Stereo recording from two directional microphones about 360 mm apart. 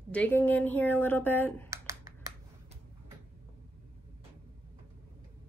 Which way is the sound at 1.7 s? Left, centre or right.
Centre.